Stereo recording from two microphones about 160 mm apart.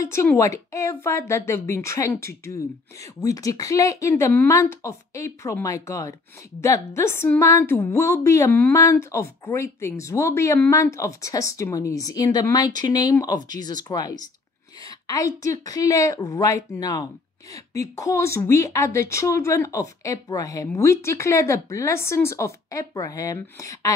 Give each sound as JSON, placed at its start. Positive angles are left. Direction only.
{"t": 0.0, "sound": "a woman's voice", "side_deg": 15}